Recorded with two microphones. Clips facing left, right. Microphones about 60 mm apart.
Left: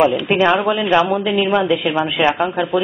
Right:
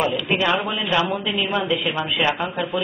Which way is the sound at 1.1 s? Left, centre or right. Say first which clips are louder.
Left 7 dB; left.